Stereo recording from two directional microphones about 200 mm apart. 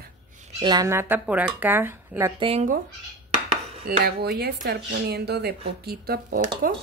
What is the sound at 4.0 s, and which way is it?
Speech, 50° right (ahead or behind).